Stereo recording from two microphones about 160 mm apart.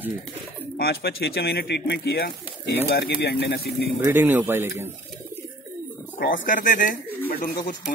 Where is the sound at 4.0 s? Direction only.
15° right (ahead or behind).